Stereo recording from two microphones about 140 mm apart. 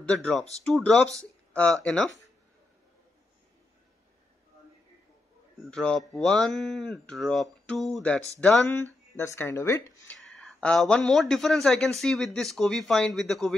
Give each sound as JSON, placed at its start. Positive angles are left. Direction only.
{"t": 0.0, "sound": "speech", "side_deg": 5}
{"t": 5.6, "sound": "speech", "side_deg": 5}
{"t": 8.6, "sound": "speech", "side_deg": 20}
{"t": 10.1, "sound": "speech", "side_deg": 0}